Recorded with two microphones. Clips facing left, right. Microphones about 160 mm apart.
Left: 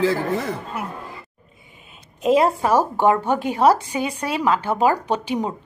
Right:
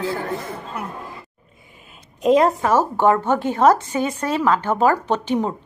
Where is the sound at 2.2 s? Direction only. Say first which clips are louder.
Right 1 dB; 5° left (ahead or behind).